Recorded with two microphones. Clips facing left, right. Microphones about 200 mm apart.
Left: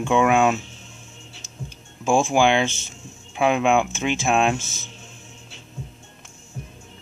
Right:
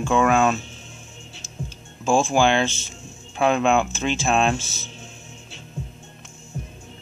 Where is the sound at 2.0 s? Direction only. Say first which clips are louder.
Even; 15° left (ahead or behind).